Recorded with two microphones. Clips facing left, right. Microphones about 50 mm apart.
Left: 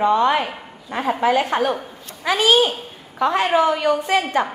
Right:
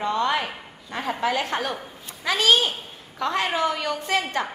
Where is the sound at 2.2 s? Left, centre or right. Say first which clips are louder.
Left 4 dB; centre.